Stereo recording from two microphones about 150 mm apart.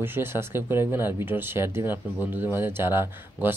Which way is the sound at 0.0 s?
15° right (ahead or behind).